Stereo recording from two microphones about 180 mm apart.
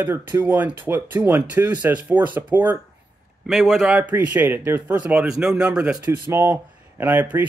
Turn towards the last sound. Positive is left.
turn(degrees=-10)  # may be behind; listen again after turning